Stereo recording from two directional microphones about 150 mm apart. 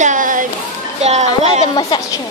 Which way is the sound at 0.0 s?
60° right (ahead or behind).